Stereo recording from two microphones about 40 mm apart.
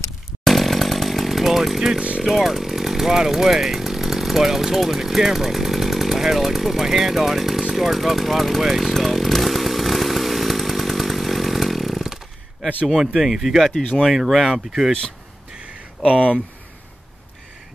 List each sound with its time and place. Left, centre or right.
0.4 s chainsaw: centre
2.0 s speech: right
2.2 s speech: centre
9.0 s chainsaw: centre
13.0 s speech: centre